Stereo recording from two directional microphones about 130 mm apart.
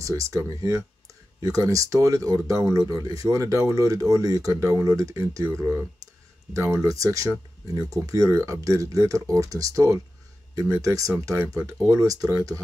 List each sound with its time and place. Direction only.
0.0 s speech: 25° right (ahead or behind)